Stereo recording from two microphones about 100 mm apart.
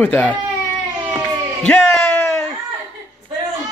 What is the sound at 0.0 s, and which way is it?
Speech, 15° left (ahead or behind).